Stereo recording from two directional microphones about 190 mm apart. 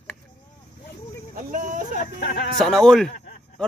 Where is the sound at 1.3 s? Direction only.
45° right (ahead or behind).